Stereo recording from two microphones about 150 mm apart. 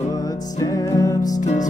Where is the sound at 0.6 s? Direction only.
25° left (ahead or behind).